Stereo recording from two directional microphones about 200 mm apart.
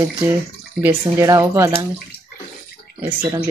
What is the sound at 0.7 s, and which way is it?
Speech, 15° right (ahead or behind).